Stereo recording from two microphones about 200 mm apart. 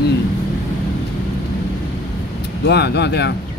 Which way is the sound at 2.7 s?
55° left (ahead or behind).